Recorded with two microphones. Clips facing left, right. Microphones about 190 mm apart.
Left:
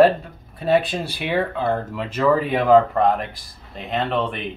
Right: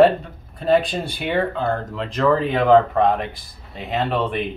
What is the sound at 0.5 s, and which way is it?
Speech, 5° left (ahead or behind).